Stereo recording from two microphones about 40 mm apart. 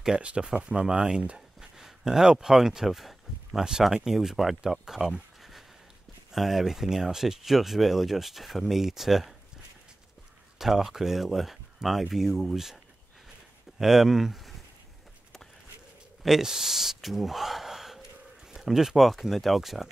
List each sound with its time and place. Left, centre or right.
0.2 s speech: right; by 5.1 s centre
6.3 s speech: centre
10.6 s speech: centre
13.7 s speech: centre
16.2 s speech: centre